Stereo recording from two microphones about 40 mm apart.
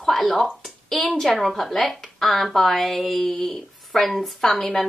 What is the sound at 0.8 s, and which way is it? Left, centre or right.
A woman's voice, centre.